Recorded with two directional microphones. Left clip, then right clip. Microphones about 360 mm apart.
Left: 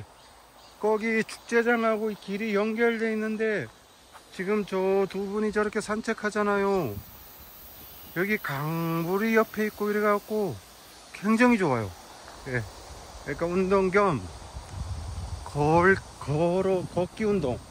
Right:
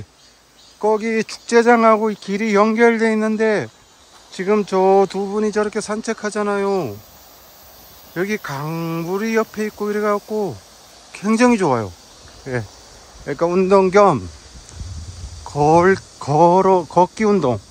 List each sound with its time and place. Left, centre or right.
0.7 s speech: centre
8.1 s speech: centre
13.2 s speech: centre
15.5 s speech: centre